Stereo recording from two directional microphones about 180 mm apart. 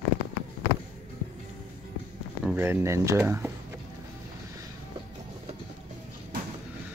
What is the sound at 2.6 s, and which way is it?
Speech, 15° right (ahead or behind).